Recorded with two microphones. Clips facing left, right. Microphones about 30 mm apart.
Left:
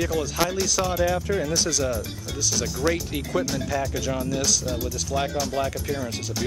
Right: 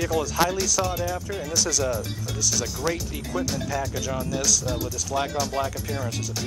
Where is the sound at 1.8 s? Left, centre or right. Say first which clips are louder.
Even; centre.